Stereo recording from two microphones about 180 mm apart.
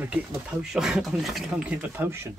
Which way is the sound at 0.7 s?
5° right (ahead or behind).